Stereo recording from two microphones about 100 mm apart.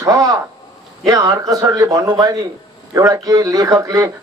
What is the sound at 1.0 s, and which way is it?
A man's voice, 40° right (ahead or behind).